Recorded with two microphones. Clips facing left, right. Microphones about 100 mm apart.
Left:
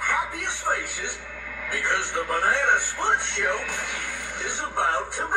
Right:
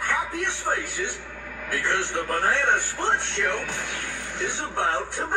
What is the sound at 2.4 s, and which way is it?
Speech, 50° left (ahead or behind).